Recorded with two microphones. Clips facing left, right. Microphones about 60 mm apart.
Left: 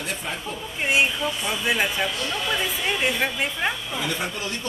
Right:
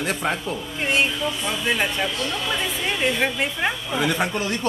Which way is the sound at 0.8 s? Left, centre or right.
Centre.